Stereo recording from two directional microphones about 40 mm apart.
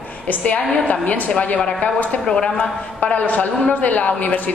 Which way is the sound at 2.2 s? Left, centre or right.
Left.